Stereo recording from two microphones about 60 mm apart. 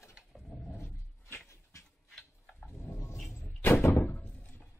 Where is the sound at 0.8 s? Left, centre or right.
Left.